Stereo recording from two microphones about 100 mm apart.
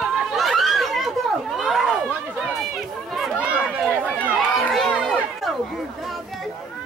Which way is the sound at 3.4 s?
10° right (ahead or behind).